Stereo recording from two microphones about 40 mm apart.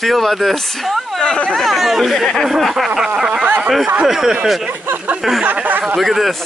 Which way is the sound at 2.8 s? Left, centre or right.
Centre.